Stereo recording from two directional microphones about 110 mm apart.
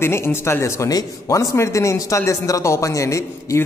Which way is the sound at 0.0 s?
20° left (ahead or behind).